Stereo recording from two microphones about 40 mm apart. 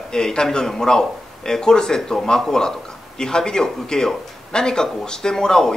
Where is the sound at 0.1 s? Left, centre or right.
Centre.